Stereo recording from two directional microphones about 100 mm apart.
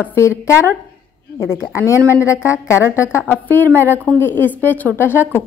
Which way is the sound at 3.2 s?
15° left (ahead or behind).